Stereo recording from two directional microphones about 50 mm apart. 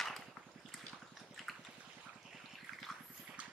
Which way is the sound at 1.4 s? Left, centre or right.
Centre.